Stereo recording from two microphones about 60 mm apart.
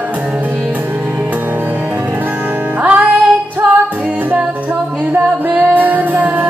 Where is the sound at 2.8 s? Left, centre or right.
Right.